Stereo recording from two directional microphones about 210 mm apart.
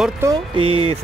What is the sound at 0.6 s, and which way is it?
Speech, 30° right (ahead or behind).